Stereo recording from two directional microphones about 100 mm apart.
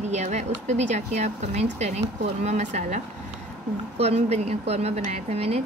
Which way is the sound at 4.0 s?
90° right.